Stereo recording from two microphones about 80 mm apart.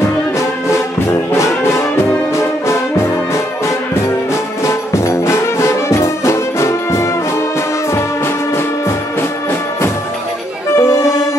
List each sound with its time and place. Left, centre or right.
2.3 s brass instrument: left
4.6 s brass instrument: left
10.8 s music: left